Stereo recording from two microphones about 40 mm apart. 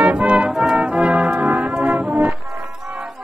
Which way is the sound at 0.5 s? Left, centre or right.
Centre.